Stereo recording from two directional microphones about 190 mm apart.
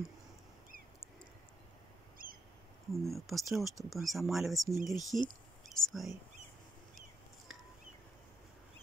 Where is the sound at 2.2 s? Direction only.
50° right (ahead or behind).